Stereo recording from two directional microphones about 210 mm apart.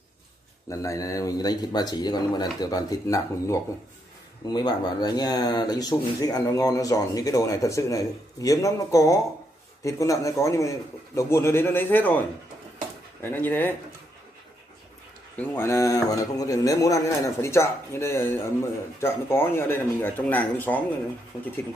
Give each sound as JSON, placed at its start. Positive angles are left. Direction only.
{"t": 0.7, "sound": "a man's voice", "side_deg": 15}
{"t": 13.2, "sound": "a man's voice", "side_deg": 10}
{"t": 15.3, "sound": "a man's voice", "side_deg": 10}